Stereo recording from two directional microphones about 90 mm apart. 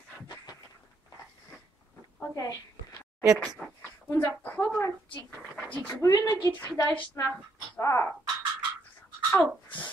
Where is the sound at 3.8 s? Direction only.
30° left (ahead or behind).